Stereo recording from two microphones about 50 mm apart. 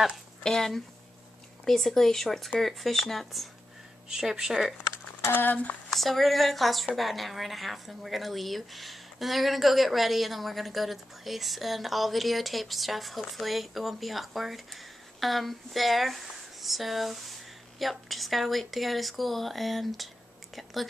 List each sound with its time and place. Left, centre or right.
0.4 s speech: centre
4.1 s speech: centre
5.2 s speech: left
5.9 s speech: centre